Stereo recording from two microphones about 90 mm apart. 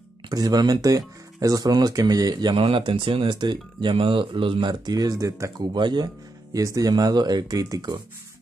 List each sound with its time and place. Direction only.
0.3 s speech: 45° right (ahead or behind)
2.5 s speech: 70° right (ahead or behind); by 5.5 s 40° right (ahead or behind)
5.6 s speech: 55° right (ahead or behind)